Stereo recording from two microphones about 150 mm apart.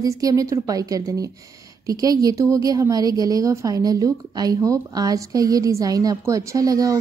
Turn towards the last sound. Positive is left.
turn(degrees=-25)  # may be behind; listen again after turning